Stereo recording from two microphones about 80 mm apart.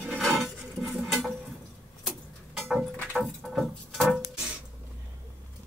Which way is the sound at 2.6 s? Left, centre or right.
Centre.